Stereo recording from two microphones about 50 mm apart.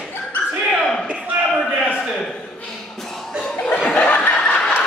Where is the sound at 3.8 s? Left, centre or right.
Left.